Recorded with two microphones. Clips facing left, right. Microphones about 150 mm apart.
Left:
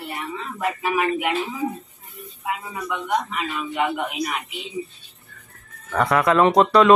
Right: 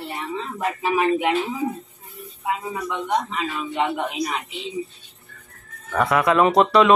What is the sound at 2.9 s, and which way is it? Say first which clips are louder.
Speech: even; 30° right (ahead or behind).